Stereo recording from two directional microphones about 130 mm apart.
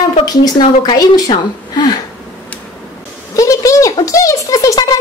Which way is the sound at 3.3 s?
25° left (ahead or behind).